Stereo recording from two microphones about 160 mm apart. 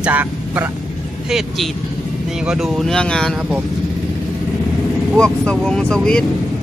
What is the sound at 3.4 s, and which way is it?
Speech, 10° right (ahead or behind).